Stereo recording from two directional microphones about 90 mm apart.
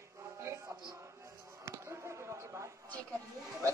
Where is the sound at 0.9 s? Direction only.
35° right (ahead or behind).